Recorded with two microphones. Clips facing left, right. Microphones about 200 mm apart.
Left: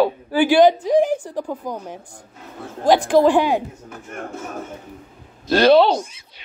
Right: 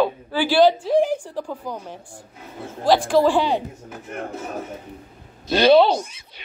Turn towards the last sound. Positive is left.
turn(degrees=-5)  # may be behind; listen again after turning